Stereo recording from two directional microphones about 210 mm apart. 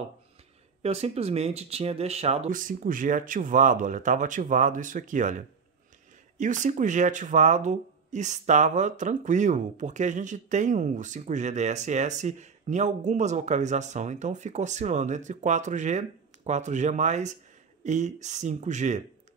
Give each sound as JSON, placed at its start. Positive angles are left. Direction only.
{"t": 0.8, "sound": "speech", "side_deg": -30}